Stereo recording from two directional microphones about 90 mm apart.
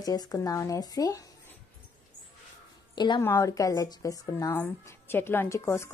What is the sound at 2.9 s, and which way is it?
Speech, 55° left (ahead or behind).